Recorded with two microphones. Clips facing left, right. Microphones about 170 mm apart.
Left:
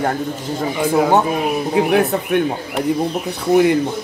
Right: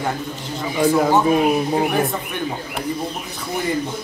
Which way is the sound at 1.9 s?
70° left (ahead or behind).